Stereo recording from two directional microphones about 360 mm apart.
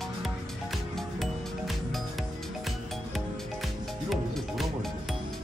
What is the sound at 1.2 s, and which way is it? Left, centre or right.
Music, centre.